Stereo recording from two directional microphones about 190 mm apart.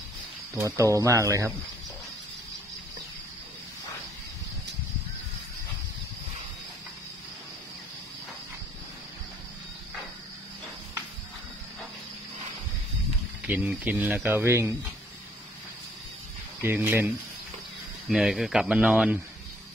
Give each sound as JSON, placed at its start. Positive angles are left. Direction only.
{"t": 0.6, "sound": "speech", "side_deg": -15}
{"t": 13.5, "sound": "speech", "side_deg": -10}
{"t": 16.6, "sound": "speech", "side_deg": -10}